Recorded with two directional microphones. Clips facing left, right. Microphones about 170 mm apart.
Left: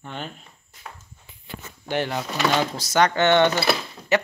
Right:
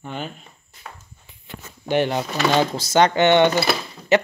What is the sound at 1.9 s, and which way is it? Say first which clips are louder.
Speech: right 5 dB; 20° right (ahead or behind).